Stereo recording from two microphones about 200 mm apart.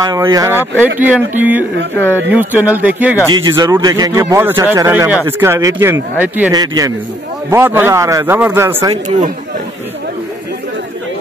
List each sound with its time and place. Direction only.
0.0 s speech: 20° right (ahead or behind)
3.3 s speech: 20° right (ahead or behind)
6.5 s a man's voice: 20° right (ahead or behind)